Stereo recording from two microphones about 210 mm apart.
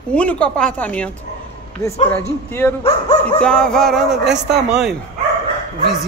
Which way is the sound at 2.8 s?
30° left (ahead or behind).